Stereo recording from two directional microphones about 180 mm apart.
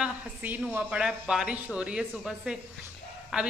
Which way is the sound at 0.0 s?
5° right (ahead or behind).